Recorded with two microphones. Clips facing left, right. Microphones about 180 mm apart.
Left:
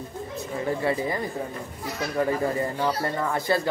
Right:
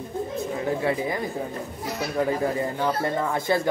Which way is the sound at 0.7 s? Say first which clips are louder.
Even; 5° right (ahead or behind).